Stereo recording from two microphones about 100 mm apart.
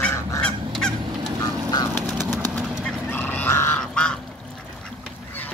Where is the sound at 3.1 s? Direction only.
20° left (ahead or behind).